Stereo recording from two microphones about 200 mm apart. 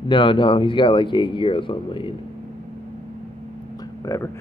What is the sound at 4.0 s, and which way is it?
Speech, 15° left (ahead or behind).